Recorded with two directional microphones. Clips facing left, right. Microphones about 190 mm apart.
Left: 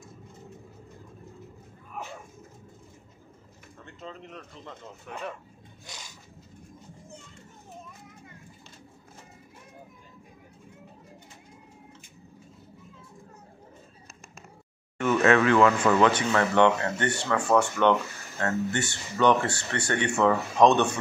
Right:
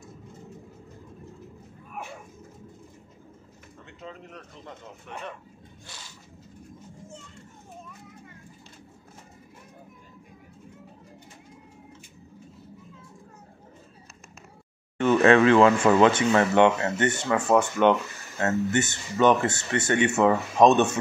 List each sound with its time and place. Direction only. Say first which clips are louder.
15.0 s speech: right 3 dB; 30° right (ahead or behind)